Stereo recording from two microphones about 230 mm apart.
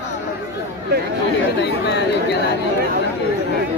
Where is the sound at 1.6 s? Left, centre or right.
Left.